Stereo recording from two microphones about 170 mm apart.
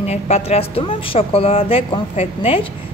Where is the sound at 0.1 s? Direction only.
35° left (ahead or behind).